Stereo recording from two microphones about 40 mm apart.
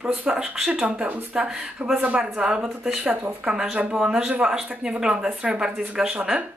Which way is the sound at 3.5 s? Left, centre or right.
Centre.